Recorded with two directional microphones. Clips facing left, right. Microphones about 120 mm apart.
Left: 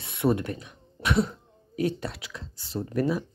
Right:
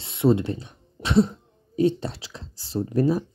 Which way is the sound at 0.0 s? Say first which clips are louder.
Right 4 dB; 25° right (ahead or behind).